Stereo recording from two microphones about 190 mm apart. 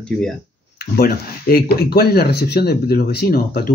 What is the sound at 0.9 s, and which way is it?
Speech, 55° left (ahead or behind).